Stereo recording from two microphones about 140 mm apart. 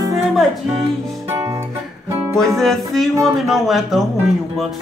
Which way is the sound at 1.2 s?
25° right (ahead or behind).